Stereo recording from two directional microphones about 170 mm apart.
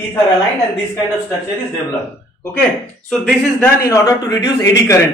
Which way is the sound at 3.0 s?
5° left (ahead or behind).